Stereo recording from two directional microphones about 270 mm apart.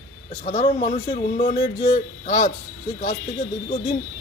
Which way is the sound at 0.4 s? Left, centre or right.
Centre.